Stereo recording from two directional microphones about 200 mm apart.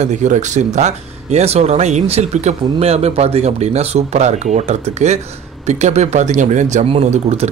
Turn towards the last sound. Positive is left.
turn(degrees=-30)  # may be behind; listen again after turning